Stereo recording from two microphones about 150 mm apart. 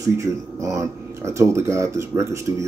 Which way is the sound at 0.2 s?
20° right (ahead or behind).